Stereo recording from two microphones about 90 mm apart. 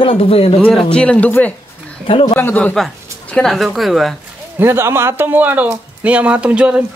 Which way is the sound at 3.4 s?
Centre (ahead or behind).